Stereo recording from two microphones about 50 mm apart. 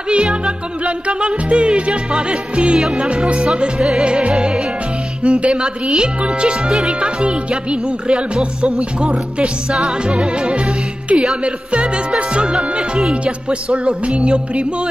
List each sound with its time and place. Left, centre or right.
0.1 s music: right
0.8 s speech: right
2.8 s music: centre
3.7 s music: centre
4.0 s speech: centre